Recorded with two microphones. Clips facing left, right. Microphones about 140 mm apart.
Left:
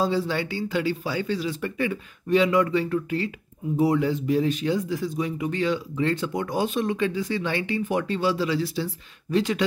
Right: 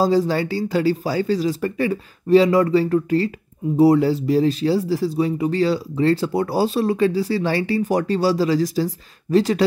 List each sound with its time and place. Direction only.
0.0 s speech: 40° right (ahead or behind)